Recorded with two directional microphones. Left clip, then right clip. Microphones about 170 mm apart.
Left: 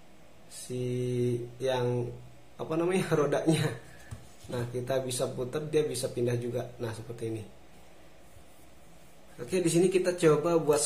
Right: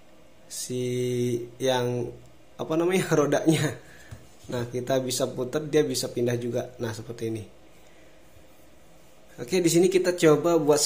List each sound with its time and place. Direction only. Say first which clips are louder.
0.7 s mantra: right 4 dB; 35° right (ahead or behind)
2.5 s speech: right 5 dB; 30° right (ahead or behind)
9.4 s speech: right 5 dB; 30° right (ahead or behind)